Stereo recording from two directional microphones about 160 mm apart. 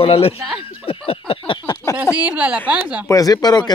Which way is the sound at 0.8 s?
35° left (ahead or behind).